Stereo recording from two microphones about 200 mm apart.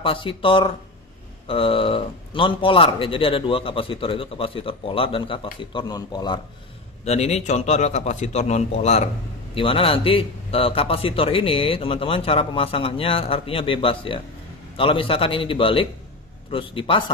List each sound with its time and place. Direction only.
0.0 s a man's voice: 25° left (ahead or behind)
7.1 s a man's voice: 35° left (ahead or behind)